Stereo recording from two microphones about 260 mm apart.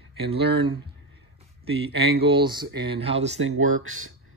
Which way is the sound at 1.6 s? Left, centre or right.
Right.